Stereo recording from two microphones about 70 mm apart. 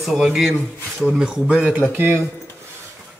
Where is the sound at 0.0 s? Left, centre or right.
Centre; by 2.2 s right.